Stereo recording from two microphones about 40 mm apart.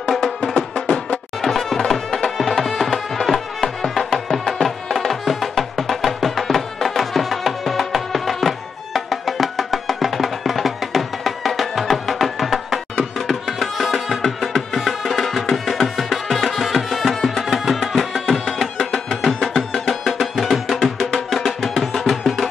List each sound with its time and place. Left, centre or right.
0.6 s music: left
1.4 s music: centre
13.3 s music: centre